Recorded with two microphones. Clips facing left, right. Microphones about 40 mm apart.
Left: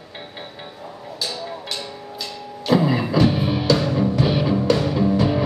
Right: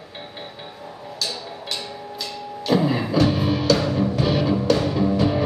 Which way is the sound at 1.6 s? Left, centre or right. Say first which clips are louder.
Even; centre.